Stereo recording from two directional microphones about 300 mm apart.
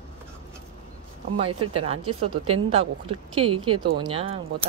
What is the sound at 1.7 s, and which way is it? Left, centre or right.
Speech, centre.